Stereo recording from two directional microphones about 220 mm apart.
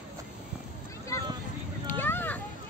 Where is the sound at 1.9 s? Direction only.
10° left (ahead or behind).